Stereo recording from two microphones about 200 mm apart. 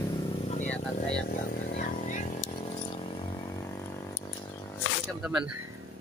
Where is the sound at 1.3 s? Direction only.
45° left (ahead or behind).